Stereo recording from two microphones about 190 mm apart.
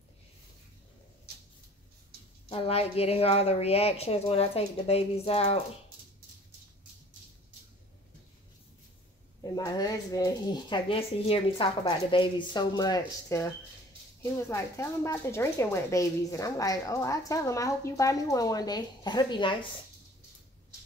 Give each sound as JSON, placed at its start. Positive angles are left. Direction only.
{"t": 2.5, "sound": "speech", "side_deg": 30}
{"t": 9.4, "sound": "speech", "side_deg": 20}
{"t": 14.5, "sound": "speech", "side_deg": 15}